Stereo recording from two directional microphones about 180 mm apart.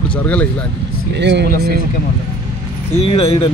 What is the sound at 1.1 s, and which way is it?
Speech, 70° right (ahead or behind).